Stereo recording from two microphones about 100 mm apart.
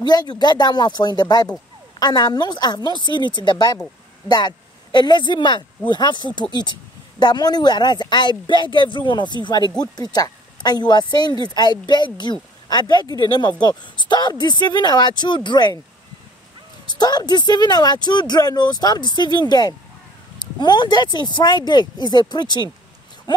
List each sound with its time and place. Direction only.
0.0 s speech: 45° left (ahead or behind)
16.9 s speech: 45° left (ahead or behind)